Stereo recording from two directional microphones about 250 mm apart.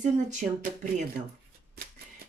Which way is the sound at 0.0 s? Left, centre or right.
Right.